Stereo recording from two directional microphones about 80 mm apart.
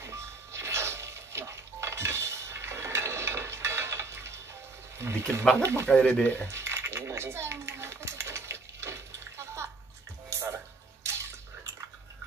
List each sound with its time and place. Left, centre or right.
0.0 s music: right
4.9 s a sound: right
5.6 s speech: right
5.9 s speech: centre
6.5 s coin: right
11.1 s bathtub: right